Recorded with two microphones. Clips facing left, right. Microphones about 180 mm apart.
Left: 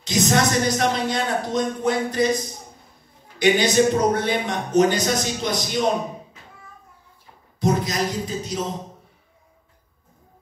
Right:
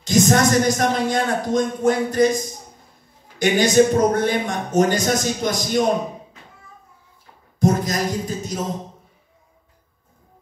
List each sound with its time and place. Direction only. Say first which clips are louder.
0.0 s a man's voice: right 4 dB; 45° right (ahead or behind)
7.6 s a man's voice: right 2 dB; 45° right (ahead or behind)